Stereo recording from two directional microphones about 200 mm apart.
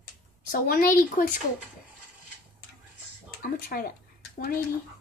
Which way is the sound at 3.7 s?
45° left (ahead or behind).